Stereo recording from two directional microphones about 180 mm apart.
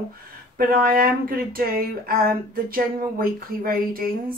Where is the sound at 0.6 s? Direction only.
55° right (ahead or behind).